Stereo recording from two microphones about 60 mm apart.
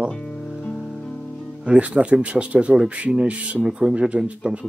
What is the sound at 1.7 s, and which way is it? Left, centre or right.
Speech, centre.